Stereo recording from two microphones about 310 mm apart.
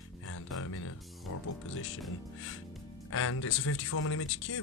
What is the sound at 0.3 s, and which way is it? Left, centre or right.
Speech, left.